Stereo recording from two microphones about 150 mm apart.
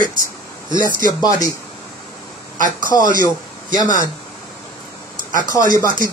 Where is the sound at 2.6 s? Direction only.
65° right (ahead or behind).